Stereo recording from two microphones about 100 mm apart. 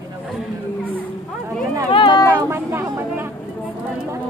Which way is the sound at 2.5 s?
25° right (ahead or behind).